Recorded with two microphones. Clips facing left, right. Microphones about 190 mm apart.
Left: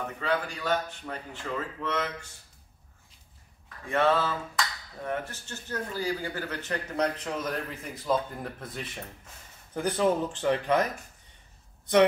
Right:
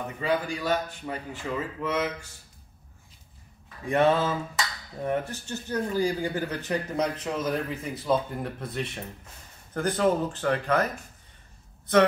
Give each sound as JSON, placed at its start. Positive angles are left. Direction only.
{"t": 0.2, "sound": "speech", "side_deg": -10}
{"t": 3.6, "sound": "mantra", "side_deg": -15}
{"t": 5.0, "sound": "speech", "side_deg": -15}
{"t": 9.8, "sound": "speech", "side_deg": 10}